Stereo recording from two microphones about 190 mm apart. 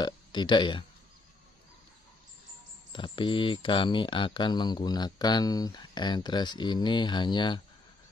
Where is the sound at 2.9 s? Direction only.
25° left (ahead or behind).